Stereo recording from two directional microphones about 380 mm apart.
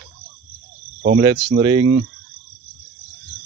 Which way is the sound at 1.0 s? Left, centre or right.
Centre.